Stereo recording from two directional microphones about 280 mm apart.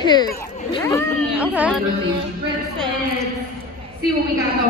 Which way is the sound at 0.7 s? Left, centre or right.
Centre.